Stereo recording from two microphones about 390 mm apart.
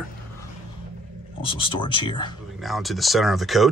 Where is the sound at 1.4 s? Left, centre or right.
Centre.